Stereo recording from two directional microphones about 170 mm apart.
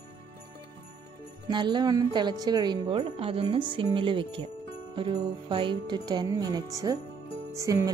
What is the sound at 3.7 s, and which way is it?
Jingle bell, 30° right (ahead or behind).